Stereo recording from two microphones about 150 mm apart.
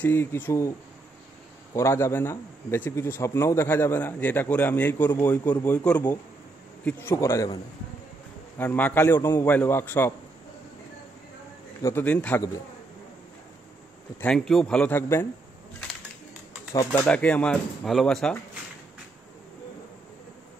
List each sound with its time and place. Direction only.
0.0 s a man's voice: 15° left (ahead or behind)
8.5 s a man's voice: 10° left (ahead or behind)
11.8 s a man's voice: 15° left (ahead or behind)
14.2 s a man's voice: 5° left (ahead or behind)
16.9 s a man's voice: 10° left (ahead or behind)